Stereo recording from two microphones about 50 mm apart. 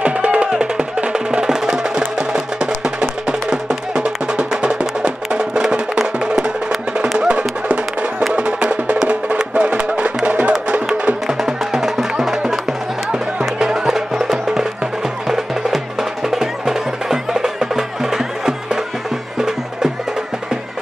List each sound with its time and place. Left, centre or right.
0.0 s music: right
10.5 s music: centre